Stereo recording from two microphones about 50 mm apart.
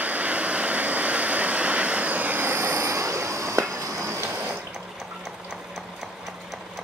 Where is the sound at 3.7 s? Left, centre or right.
Right.